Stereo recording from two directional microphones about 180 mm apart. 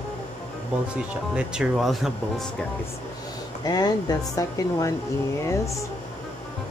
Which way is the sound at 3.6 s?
20° left (ahead or behind).